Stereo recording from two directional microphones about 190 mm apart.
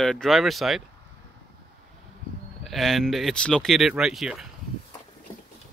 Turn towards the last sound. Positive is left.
turn(degrees=0)  # may be behind; listen again after turning